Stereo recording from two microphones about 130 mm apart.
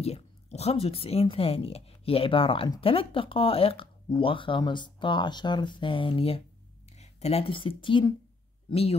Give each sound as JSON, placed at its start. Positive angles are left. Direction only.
{"t": 0.0, "sound": "speech", "side_deg": 55}